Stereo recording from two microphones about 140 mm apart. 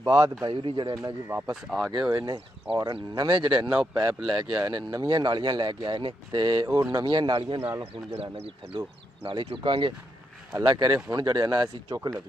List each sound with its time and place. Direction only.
0.0 s speech: 25° right (ahead or behind)
0.6 s speech: 35° right (ahead or behind)
1.3 s speech: 5° right (ahead or behind)
1.9 s speech: 25° right (ahead or behind)
7.6 s speech: 20° right (ahead or behind)
8.2 s speech: 40° right (ahead or behind)